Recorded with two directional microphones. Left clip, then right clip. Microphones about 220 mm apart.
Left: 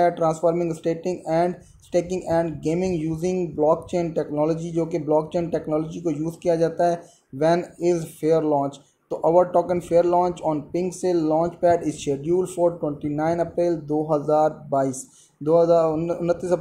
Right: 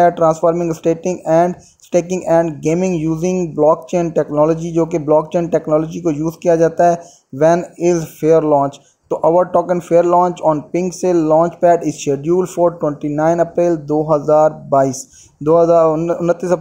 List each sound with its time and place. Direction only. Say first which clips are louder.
0.0 s speech: right 8 dB; 25° right (ahead or behind)